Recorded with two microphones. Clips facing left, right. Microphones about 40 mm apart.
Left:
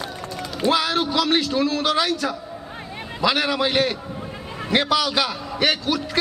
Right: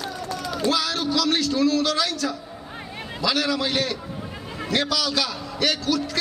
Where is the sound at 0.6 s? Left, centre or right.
Left.